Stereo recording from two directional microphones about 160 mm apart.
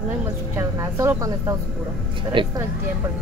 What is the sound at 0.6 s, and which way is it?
Speech, 20° right (ahead or behind).